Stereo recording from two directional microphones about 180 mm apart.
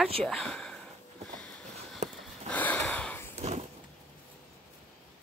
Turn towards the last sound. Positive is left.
turn(degrees=-35)  # may be behind; listen again after turning